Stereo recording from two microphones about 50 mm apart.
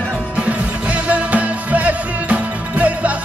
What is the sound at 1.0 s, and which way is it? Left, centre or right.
Music, right.